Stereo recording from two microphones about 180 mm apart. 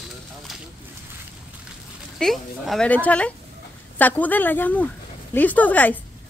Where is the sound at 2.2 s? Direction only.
Centre (ahead or behind).